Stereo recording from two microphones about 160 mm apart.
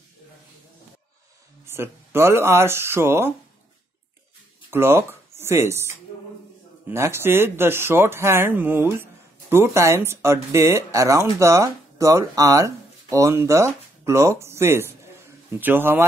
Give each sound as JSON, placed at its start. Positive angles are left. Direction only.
{"t": 1.7, "sound": "speech", "side_deg": -15}
{"t": 4.6, "sound": "speech", "side_deg": -15}